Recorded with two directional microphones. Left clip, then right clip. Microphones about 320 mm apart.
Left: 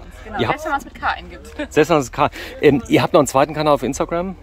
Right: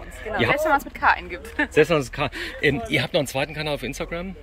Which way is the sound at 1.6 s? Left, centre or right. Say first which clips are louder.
Left 3 dB; centre.